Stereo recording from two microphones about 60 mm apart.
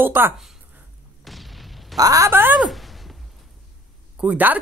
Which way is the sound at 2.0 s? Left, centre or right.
Right.